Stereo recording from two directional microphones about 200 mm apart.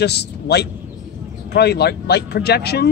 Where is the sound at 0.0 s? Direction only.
55° left (ahead or behind).